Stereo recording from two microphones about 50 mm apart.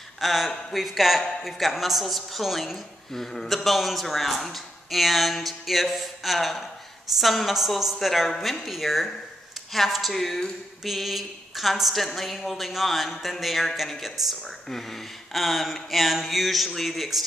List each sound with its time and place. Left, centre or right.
0.2 s a woman's voice: centre